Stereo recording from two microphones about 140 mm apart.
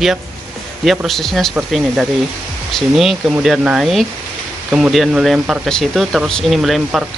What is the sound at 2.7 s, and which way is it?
Speech, centre (ahead or behind).